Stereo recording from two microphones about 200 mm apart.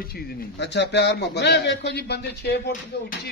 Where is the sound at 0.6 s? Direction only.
60° left (ahead or behind).